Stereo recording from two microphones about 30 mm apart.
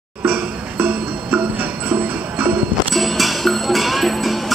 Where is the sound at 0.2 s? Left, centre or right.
Right.